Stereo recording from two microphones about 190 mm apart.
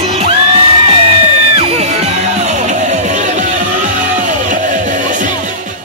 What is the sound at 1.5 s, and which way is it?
Music, 35° right (ahead or behind).